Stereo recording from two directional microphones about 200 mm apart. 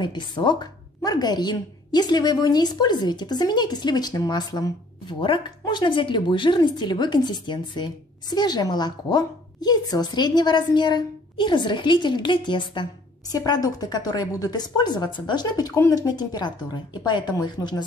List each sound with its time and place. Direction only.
0.0 s a woman's voice: 25° left (ahead or behind)